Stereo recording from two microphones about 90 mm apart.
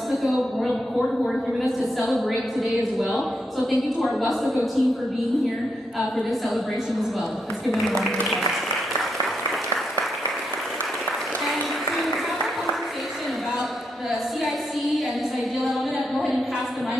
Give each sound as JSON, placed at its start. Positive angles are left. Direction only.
{"t": 0.1, "sound": "a woman's voice", "side_deg": 0}
{"t": 7.6, "sound": "a woman's voice", "side_deg": 0}